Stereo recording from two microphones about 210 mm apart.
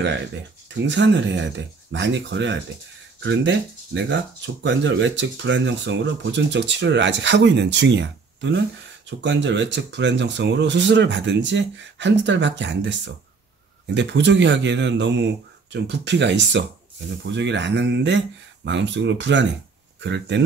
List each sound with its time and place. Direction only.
0.8 s speech: 55° right (ahead or behind)